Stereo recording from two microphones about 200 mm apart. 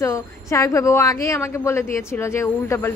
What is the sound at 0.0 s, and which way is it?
A woman's voice, 15° left (ahead or behind).